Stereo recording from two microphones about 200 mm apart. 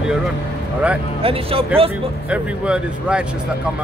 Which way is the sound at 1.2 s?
30° right (ahead or behind).